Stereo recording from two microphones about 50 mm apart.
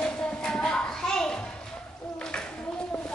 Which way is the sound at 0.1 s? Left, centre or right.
Centre.